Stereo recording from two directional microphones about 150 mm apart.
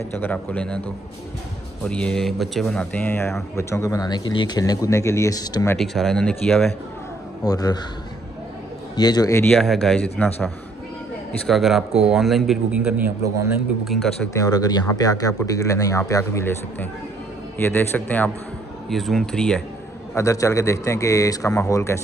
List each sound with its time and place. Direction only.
0.1 s a man's voice: 10° left (ahead or behind)
1.9 s a man's voice: 5° left (ahead or behind)
3.1 s a man's voice: 15° left (ahead or behind)
5.8 s a man's voice: centre (ahead or behind)
7.4 s speech: 25° left (ahead or behind)
8.9 s speech: 30° left (ahead or behind)
9.6 s a man's voice: 5° left (ahead or behind)
13.8 s a man's voice: 5° left (ahead or behind)
14.3 s a man's voice: 25° left (ahead or behind); by 19.6 s 5° left (ahead or behind)
20.2 s speech: 20° left (ahead or behind)